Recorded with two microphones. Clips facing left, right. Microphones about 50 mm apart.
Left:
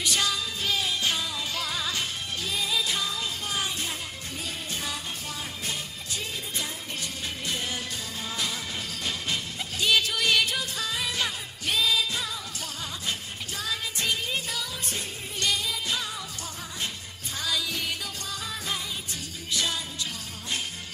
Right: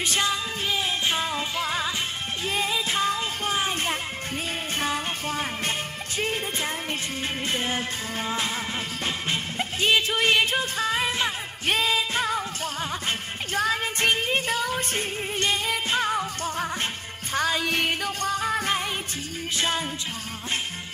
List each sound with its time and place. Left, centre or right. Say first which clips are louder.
0.0 s music: right 3 dB; right
9.0 s music: right 2 dB; right
13.6 s music: right 8 dB; right
19.5 s music: right 3 dB; right